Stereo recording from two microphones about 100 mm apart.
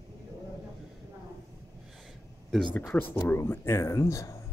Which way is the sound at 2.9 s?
20° left (ahead or behind).